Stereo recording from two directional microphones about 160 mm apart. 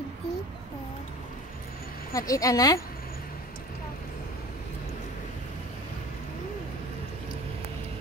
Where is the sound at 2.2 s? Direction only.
20° left (ahead or behind).